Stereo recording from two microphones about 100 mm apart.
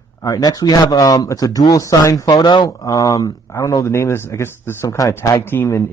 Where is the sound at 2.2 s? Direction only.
45° left (ahead or behind).